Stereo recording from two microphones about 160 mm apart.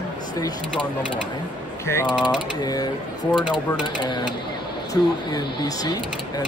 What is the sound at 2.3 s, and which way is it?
Speech, 25° left (ahead or behind).